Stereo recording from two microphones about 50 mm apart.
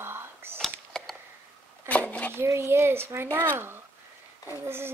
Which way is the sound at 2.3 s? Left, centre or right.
Right.